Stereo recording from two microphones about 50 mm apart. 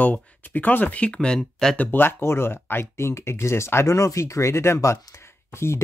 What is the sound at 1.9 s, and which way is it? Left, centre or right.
Speech, left.